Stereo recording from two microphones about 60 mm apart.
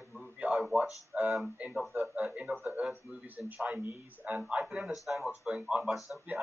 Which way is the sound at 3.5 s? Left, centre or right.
Right.